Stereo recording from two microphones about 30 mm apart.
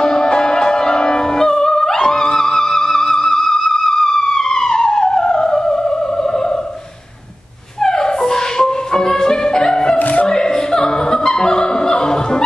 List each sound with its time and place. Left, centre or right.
0.0 s music: left
3.1 s theremin: left
7.8 s music: centre
9.9 s music: left
10.2 s opera: left